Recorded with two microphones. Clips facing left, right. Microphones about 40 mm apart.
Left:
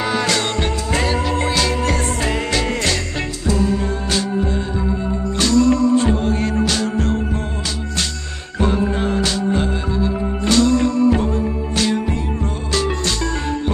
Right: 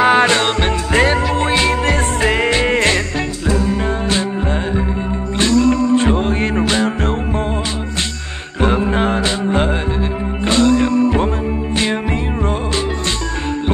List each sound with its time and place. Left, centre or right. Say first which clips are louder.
0.0 s music: right 7 dB; right
6.0 s music: right 2 dB; right
8.5 s music: right 3 dB; right